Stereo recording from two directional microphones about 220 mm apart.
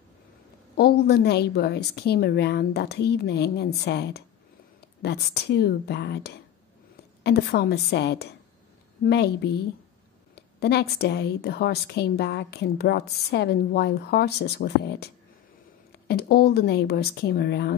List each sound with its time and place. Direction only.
0.7 s a woman's voice: 45° left (ahead or behind)
16.1 s a woman's voice: 45° left (ahead or behind)